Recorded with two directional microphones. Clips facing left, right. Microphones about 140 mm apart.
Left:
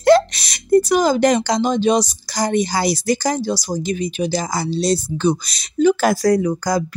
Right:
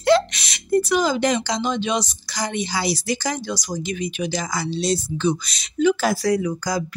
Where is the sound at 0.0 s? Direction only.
40° left (ahead or behind).